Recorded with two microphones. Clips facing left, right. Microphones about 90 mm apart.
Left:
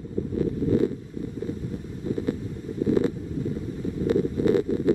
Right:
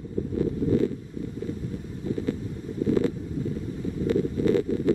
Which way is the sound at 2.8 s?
20° left (ahead or behind).